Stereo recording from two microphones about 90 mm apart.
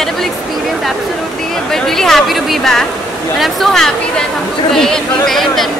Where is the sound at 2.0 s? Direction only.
5° left (ahead or behind).